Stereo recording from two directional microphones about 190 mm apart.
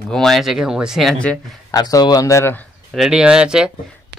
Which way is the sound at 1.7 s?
20° left (ahead or behind).